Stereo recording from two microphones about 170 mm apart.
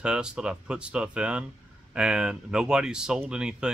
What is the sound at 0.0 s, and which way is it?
Speech, 5° right (ahead or behind).